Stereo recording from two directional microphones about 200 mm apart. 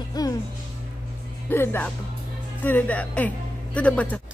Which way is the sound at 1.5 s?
10° left (ahead or behind).